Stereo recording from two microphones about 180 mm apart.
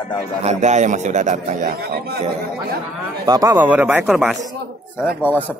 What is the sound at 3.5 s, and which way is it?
Speech, 10° right (ahead or behind).